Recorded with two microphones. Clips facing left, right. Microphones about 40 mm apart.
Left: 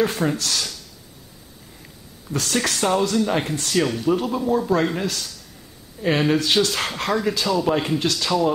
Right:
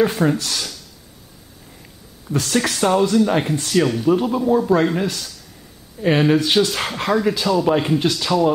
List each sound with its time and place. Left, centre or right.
0.0 s speech: centre
2.2 s speech: centre